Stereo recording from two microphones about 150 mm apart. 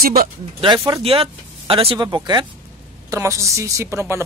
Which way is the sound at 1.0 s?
40° right (ahead or behind).